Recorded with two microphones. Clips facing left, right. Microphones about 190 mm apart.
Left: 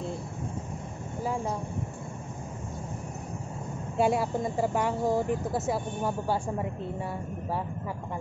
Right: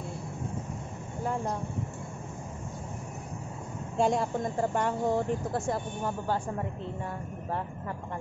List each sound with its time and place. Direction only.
1.2 s vehicle: 5° left (ahead or behind)
4.0 s speech: 5° left (ahead or behind)